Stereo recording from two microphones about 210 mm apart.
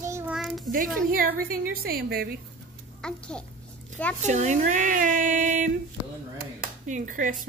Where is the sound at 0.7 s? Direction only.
40° right (ahead or behind).